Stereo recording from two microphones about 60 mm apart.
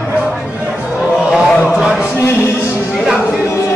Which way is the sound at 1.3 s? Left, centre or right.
Centre.